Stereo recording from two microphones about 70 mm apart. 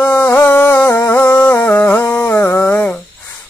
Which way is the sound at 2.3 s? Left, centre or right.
Left.